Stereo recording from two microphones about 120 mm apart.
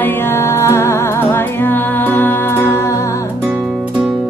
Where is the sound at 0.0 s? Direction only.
20° left (ahead or behind).